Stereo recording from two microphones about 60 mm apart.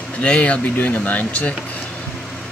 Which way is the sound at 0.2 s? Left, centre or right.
Left.